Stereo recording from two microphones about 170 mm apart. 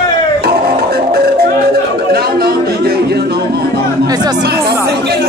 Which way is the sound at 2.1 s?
65° right (ahead or behind).